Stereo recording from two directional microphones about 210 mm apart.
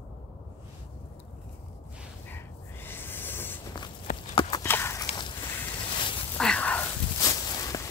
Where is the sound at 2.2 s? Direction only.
10° left (ahead or behind).